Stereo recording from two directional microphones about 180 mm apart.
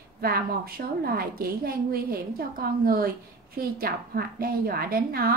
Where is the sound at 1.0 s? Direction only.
55° right (ahead or behind).